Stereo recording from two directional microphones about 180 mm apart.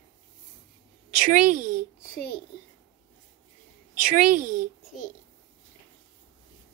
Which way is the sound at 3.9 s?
50° right (ahead or behind).